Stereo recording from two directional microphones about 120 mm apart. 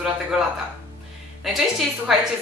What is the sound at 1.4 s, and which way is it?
Speech, centre (ahead or behind).